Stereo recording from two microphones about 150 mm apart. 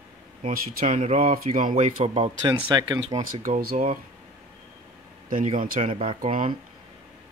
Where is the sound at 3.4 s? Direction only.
60° right (ahead or behind).